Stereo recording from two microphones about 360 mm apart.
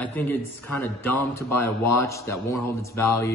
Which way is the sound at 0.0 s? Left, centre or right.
Centre.